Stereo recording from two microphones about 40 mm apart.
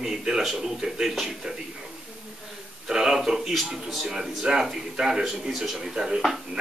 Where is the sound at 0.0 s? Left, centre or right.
Centre.